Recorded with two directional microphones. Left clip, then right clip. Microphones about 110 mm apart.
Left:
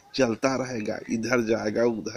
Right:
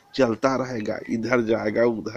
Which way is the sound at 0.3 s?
20° left (ahead or behind).